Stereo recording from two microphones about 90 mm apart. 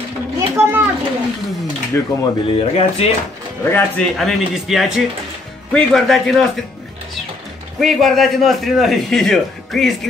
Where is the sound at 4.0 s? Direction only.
Centre (ahead or behind).